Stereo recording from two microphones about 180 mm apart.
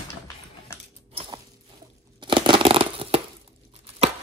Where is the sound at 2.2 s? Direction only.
25° right (ahead or behind).